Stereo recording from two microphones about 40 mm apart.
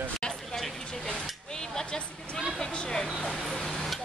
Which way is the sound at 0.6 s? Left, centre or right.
Centre.